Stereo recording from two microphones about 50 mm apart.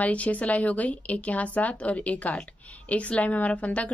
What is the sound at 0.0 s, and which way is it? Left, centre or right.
A woman's voice, left.